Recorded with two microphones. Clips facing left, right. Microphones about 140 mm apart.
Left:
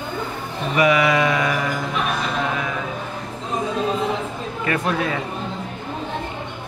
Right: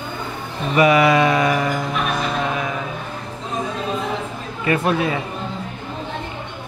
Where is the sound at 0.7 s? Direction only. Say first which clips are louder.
Right 3 dB; 30° right (ahead or behind).